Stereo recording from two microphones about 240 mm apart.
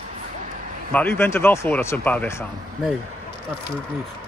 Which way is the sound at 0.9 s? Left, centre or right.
Centre.